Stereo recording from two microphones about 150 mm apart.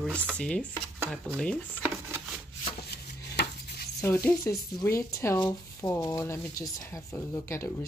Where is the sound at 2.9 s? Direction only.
90° left.